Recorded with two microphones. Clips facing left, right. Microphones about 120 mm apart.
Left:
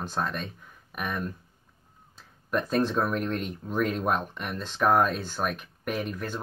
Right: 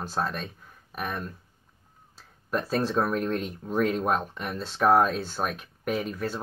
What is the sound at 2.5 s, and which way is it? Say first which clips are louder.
Speech: even; 35° right (ahead or behind).